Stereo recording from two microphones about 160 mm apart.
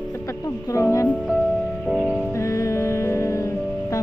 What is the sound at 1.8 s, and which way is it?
Music, centre (ahead or behind).